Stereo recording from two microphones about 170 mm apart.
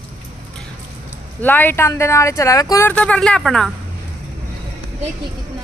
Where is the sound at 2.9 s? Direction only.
5° left (ahead or behind).